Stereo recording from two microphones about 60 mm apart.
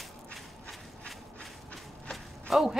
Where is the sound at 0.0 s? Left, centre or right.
Centre.